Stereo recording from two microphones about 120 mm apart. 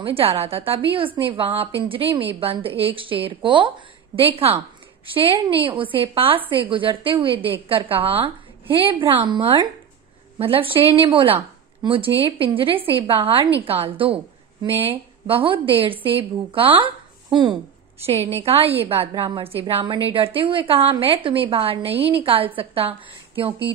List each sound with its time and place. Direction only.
0.0 s a woman's voice: 50° right (ahead or behind)
18.4 s a woman's voice: 55° right (ahead or behind)